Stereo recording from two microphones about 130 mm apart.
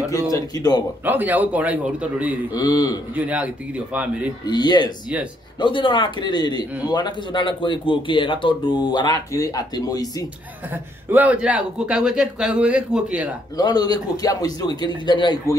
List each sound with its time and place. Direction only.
0.1 s a man's voice: 30° left (ahead or behind)
1.0 s a man's voice: 15° right (ahead or behind)
2.5 s speech: 30° left (ahead or behind)
3.2 s a man's voice: 10° right (ahead or behind)
4.5 s a man's voice: 35° left (ahead or behind)
10.7 s a man's voice: 15° right (ahead or behind)
13.6 s a man's voice: 30° left (ahead or behind)